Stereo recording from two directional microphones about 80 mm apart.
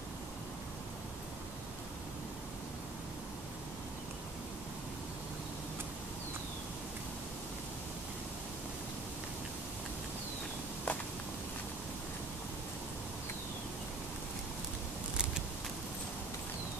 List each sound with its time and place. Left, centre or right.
10.9 s walk: centre